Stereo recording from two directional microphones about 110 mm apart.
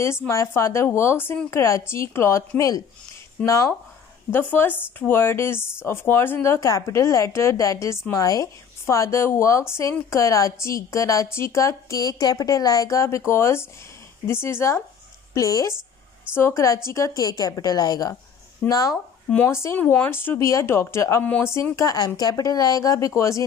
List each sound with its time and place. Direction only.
0.3 s a woman's voice: 25° left (ahead or behind)
19.3 s a woman's voice: 20° left (ahead or behind)